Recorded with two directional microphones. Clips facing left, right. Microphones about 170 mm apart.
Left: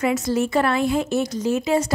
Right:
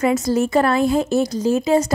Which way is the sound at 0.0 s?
35° right (ahead or behind).